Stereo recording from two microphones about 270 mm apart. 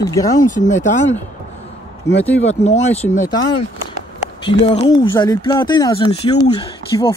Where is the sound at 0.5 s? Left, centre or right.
Left.